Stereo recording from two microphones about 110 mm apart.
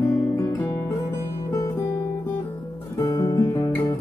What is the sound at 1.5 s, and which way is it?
Music, 30° left (ahead or behind).